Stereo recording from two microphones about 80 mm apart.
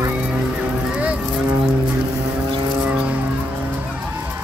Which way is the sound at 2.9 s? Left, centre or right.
Centre.